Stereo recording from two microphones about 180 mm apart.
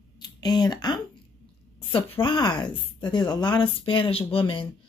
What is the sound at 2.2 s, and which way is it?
Speech, 25° left (ahead or behind).